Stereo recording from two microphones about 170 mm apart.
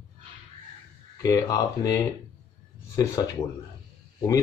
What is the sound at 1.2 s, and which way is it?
Speech, 20° left (ahead or behind).